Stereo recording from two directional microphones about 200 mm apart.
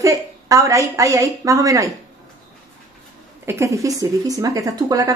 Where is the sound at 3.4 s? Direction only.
15° right (ahead or behind).